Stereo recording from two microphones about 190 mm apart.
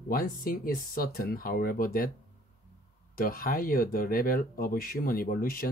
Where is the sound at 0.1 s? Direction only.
50° left (ahead or behind).